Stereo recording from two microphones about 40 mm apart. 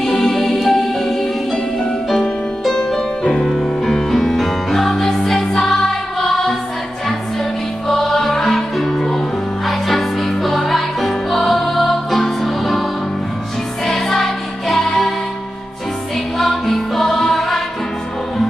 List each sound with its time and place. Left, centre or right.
0.0 s music: centre
7.9 s music: centre
13.8 s music: centre
16.3 s music: centre